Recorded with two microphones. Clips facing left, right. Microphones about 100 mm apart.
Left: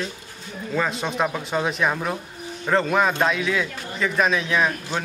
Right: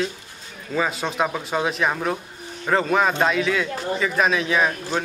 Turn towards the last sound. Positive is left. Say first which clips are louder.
# right 1 dB
turn(degrees=0)  # may be behind; listen again after turning